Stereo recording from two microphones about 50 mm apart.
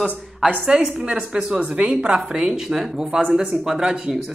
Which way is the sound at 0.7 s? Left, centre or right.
Centre.